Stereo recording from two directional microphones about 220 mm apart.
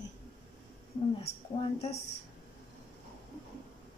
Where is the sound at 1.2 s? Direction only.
30° left (ahead or behind).